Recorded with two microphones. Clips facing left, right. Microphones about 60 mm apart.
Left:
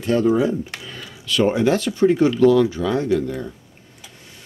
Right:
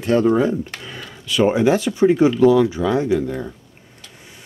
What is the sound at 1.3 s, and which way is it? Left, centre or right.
Speech, centre.